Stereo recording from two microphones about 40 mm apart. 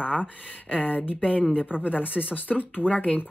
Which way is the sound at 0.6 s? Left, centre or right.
Left.